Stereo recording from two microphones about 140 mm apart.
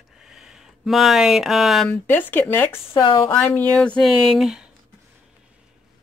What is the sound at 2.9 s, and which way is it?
Speech, 35° left (ahead or behind).